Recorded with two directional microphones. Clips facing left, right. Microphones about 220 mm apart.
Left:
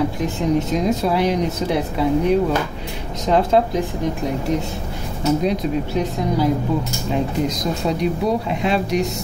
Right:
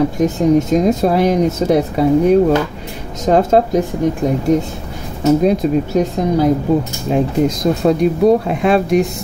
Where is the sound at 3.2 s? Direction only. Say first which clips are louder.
Right 4 dB; 45° right (ahead or behind).